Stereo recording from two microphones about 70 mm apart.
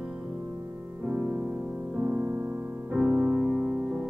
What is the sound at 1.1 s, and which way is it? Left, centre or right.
Music, right.